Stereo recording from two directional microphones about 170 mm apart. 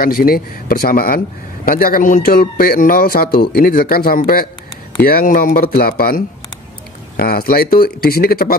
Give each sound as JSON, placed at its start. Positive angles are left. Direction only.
{"t": 0.0, "sound": "a man's voice", "side_deg": 60}